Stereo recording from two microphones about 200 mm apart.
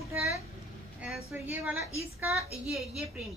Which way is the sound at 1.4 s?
Centre (ahead or behind).